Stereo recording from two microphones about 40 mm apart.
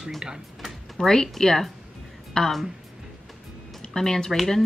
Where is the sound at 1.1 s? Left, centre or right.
Centre.